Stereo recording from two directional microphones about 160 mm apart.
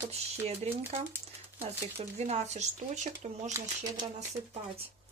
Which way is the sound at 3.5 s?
20° right (ahead or behind).